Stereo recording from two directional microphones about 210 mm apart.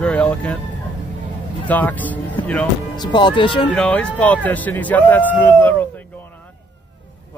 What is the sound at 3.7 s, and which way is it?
A man's voice, 5° left (ahead or behind).